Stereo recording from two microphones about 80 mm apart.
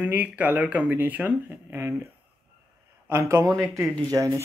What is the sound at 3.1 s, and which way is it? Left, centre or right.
Speech, right.